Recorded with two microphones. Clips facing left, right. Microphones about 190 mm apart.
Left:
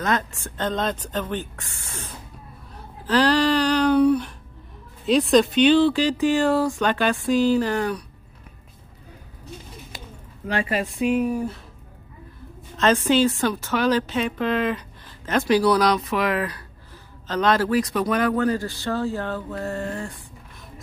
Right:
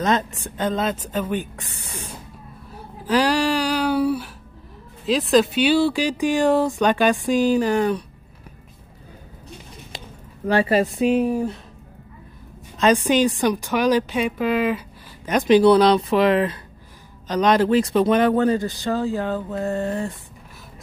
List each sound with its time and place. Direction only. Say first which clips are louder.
0.0 s a woman's voice: right 3 dB; 20° right (ahead or behind)
2.7 s a sound: right 1 dB; 10° right (ahead or behind)
5.0 s a woman's voice: even; centre (ahead or behind); by 8.0 s 20° right (ahead or behind)
10.5 s speech: right 6 dB; 35° right (ahead or behind)
12.7 s a woman's voice: right 1 dB; 15° right (ahead or behind)